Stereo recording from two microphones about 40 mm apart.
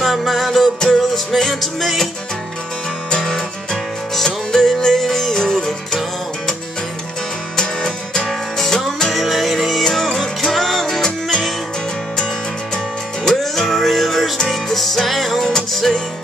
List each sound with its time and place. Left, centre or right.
0.0 s music: centre
3.1 s music: centre
7.5 s music: centre
9.1 s music: centre
12.7 s music: centre